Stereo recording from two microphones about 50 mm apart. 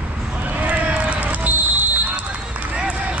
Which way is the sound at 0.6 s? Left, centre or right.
Right.